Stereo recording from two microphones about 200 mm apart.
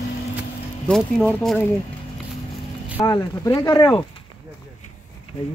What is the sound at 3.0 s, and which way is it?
Speech, 20° left (ahead or behind).